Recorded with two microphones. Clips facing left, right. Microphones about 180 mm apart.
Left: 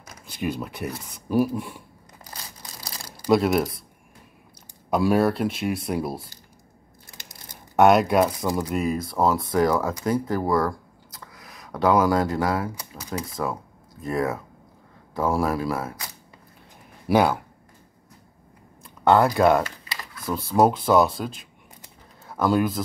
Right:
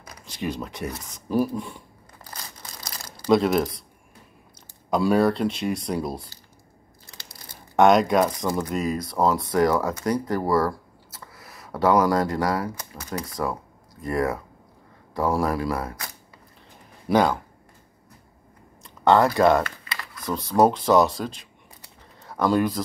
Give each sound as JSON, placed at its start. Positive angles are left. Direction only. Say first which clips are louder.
{"t": 0.2, "sound": "speech", "louder": "left 1 dB", "side_deg": 5}
{"t": 3.2, "sound": "speech", "louder": "even", "side_deg": 5}
{"t": 4.9, "sound": "speech", "louder": "even", "side_deg": 5}
{"t": 7.4, "sound": "speech", "louder": "even", "side_deg": 5}
{"t": 17.1, "sound": "speech", "louder": "even", "side_deg": 10}
{"t": 19.0, "sound": "speech", "louder": "even", "side_deg": 5}